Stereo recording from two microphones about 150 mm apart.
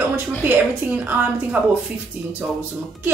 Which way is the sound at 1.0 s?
10° right (ahead or behind).